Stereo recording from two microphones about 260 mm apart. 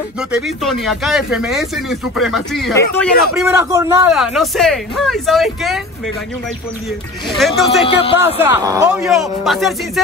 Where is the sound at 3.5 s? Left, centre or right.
Centre.